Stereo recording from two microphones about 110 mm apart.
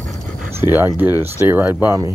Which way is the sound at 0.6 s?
20° right (ahead or behind).